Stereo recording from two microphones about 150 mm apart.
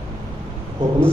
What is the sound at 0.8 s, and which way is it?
Speech, 30° right (ahead or behind).